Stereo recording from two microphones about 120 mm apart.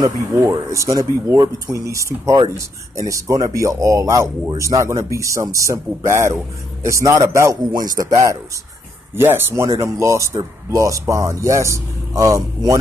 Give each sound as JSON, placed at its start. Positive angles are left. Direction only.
{"t": 0.4, "sound": "speech", "side_deg": -25}